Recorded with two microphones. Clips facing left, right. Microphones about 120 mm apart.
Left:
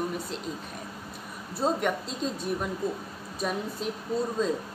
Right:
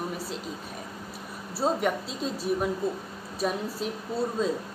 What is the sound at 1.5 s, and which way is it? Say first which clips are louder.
Speech: right 1 dB; 5° right (ahead or behind).